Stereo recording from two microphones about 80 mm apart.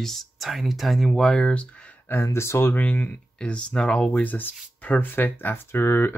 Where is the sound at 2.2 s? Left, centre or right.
Left.